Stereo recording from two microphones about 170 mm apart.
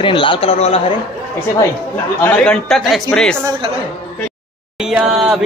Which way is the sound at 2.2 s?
5° left (ahead or behind).